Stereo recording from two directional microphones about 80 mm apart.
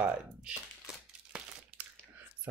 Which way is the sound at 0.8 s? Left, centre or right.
Centre.